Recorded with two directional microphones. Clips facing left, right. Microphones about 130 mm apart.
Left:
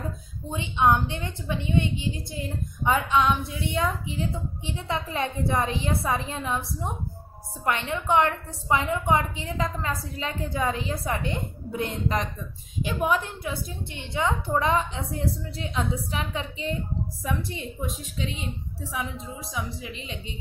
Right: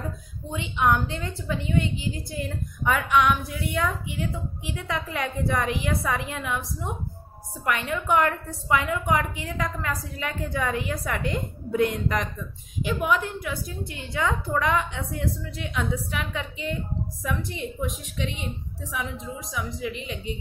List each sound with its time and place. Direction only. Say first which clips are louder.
0.5 s a woman's voice: left 1 dB; 25° left (ahead or behind)